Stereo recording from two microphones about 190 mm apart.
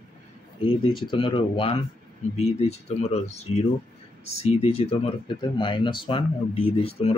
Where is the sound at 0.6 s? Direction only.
25° left (ahead or behind).